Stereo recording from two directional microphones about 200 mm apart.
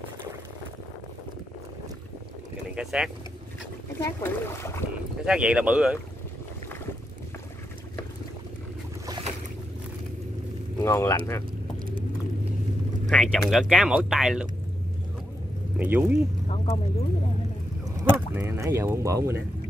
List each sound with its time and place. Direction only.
2.7 s speech: centre (ahead or behind)
4.0 s speech: 15° left (ahead or behind)
5.2 s speech: 5° right (ahead or behind)
10.8 s speech: 15° left (ahead or behind)
13.1 s speech: 5° left (ahead or behind)
15.8 s speech: 10° right (ahead or behind)
16.4 s a sound: 30° left (ahead or behind)
17.8 s speech: 15° right (ahead or behind)